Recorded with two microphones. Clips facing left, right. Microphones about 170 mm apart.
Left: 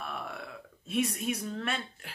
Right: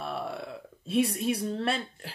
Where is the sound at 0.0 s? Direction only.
30° right (ahead or behind).